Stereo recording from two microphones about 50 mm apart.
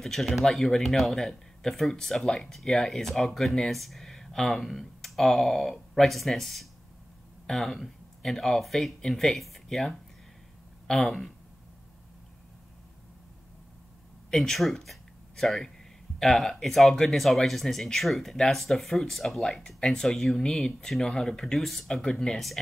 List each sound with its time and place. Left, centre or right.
0.0 s speech: centre
14.3 s speech: centre
21.5 s speech: centre
21.9 s speech: centre